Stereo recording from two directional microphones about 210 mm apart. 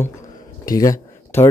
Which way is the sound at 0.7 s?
15° left (ahead or behind).